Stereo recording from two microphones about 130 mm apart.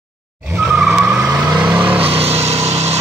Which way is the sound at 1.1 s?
25° right (ahead or behind).